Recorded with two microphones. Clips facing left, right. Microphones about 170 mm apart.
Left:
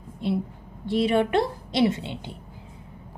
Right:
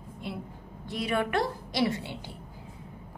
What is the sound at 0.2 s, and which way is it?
A woman's voice, 30° left (ahead or behind).